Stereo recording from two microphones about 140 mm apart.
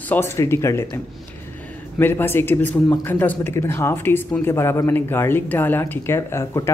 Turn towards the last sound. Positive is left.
turn(degrees=20)  # may be behind; listen again after turning